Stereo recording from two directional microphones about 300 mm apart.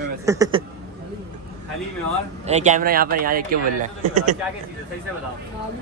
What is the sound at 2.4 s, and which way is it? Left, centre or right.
Speech, right.